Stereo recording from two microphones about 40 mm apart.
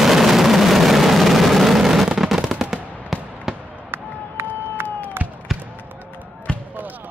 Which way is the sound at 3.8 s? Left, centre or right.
Right.